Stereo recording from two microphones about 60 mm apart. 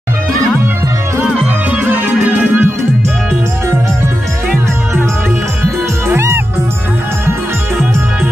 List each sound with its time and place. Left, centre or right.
1.8 s music: right
2.2 s music: right
6.0 s music: right